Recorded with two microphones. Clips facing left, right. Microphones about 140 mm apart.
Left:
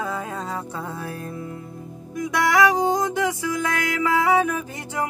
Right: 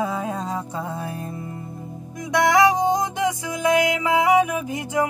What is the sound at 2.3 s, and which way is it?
Music, 20° right (ahead or behind).